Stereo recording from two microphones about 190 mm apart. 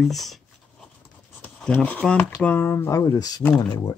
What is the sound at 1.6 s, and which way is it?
Speech, 10° left (ahead or behind).